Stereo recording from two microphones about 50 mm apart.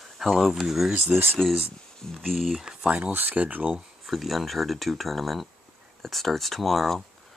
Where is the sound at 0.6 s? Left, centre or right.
Centre.